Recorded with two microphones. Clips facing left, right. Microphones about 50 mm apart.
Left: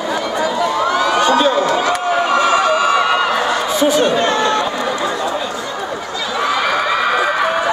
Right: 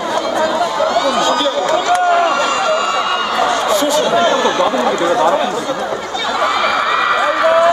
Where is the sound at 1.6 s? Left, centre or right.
Centre.